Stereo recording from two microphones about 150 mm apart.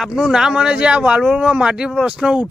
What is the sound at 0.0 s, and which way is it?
Speech, 5° right (ahead or behind).